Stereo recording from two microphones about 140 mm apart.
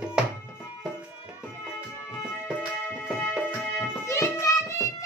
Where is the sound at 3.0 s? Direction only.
5° right (ahead or behind).